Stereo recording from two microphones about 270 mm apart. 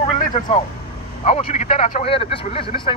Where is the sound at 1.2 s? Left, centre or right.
Left.